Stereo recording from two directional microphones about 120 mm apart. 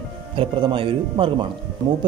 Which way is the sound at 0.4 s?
45° right (ahead or behind).